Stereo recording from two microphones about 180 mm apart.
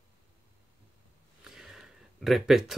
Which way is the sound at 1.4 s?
5° right (ahead or behind).